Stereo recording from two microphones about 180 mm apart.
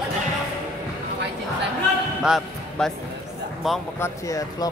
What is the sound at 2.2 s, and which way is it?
Speech, centre (ahead or behind).